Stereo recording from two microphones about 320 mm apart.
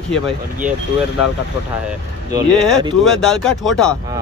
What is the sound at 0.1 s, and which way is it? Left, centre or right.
Speech, centre.